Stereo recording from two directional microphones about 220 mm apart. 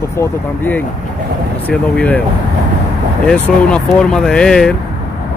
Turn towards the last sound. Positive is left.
turn(degrees=5)  # may be behind; listen again after turning